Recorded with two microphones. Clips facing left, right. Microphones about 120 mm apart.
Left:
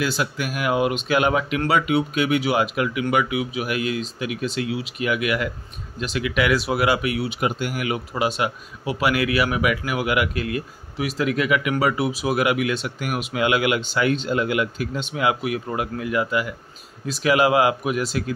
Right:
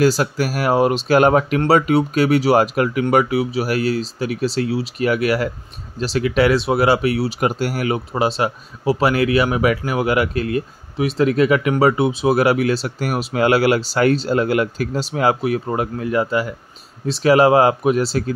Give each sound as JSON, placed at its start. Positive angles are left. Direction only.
{"t": 0.0, "sound": "speech", "side_deg": -40}